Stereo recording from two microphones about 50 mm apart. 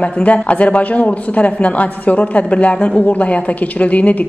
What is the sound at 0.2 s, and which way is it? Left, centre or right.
A woman's voice, left.